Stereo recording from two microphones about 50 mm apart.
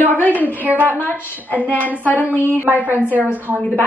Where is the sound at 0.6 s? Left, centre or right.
Right.